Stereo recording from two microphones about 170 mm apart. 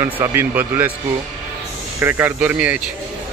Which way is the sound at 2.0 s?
15° right (ahead or behind).